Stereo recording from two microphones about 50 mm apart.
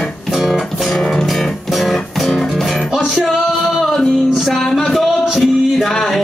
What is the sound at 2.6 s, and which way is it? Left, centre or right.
Music, centre.